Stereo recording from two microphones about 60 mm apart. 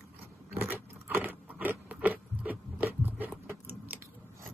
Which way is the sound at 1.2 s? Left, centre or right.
Right.